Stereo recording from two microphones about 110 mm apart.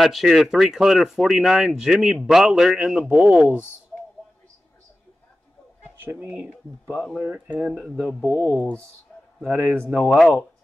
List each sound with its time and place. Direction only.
0.0 s speech: centre (ahead or behind)
6.0 s speech: 15° right (ahead or behind)
8.2 s speech: 30° left (ahead or behind)
8.5 s speech: 15° left (ahead or behind)
9.5 s speech: 15° right (ahead or behind)